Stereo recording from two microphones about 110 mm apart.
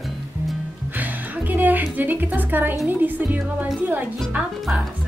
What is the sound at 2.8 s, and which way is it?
A woman's voice, 15° right (ahead or behind).